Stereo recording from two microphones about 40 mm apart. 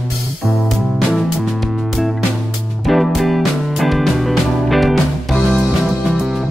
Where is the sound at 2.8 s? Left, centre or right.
Centre.